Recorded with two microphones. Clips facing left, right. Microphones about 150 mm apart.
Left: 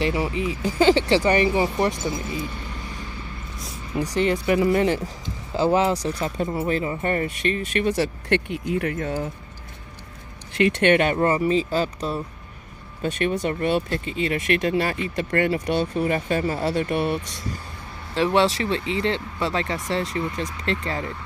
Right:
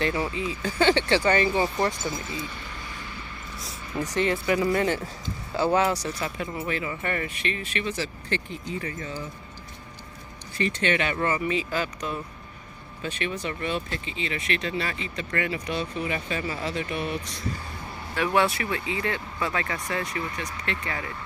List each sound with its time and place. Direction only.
0.0 s speech: 20° left (ahead or behind)
3.9 s speech: 10° left (ahead or behind); by 9.3 s 60° left (ahead or behind)
10.6 s speech: 60° left (ahead or behind)
11.1 s speech: 35° left (ahead or behind)
13.0 s speech: 50° left (ahead or behind)
18.1 s speech: 25° left (ahead or behind)